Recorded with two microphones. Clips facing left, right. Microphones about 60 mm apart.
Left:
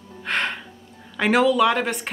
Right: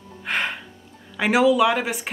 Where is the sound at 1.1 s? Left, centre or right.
Centre.